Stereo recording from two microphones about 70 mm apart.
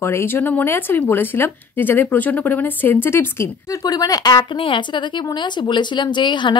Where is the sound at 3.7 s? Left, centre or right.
Left.